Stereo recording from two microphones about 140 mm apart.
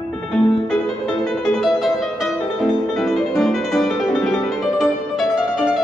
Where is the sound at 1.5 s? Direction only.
Centre (ahead or behind).